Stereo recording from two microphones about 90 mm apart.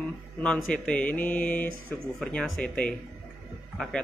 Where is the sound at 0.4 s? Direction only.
15° left (ahead or behind).